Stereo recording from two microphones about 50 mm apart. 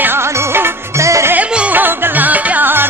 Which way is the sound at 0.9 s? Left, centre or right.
Right.